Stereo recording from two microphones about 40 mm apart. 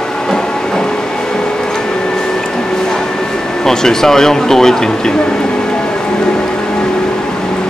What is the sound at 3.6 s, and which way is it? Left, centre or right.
Speech, centre.